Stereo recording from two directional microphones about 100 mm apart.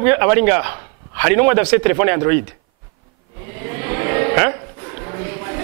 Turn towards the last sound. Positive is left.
turn(degrees=-15)  # may be behind; listen again after turning